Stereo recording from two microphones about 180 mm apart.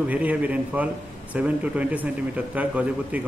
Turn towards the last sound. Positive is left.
turn(degrees=-10)  # may be behind; listen again after turning